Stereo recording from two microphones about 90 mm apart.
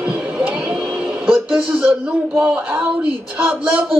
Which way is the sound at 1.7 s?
20° right (ahead or behind).